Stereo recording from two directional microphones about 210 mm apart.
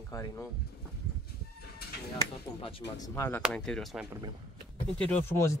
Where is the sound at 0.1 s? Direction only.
15° left (ahead or behind).